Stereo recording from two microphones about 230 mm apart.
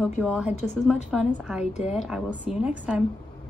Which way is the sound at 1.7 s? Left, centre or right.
Left.